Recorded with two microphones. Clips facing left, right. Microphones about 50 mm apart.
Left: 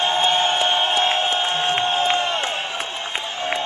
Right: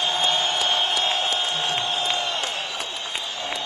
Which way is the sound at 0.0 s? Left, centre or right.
Left.